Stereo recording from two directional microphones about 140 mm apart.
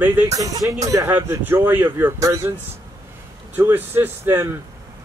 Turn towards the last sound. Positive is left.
turn(degrees=-15)  # may be behind; listen again after turning